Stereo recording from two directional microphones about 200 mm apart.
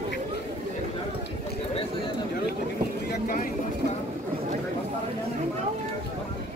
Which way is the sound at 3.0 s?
45° left (ahead or behind).